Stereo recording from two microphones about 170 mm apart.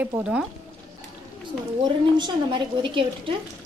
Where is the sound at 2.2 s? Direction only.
30° right (ahead or behind).